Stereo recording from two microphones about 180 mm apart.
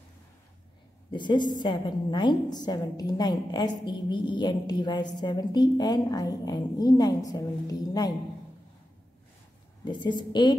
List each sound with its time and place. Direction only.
1.1 s a woman's voice: 25° left (ahead or behind)
9.8 s a woman's voice: 25° left (ahead or behind)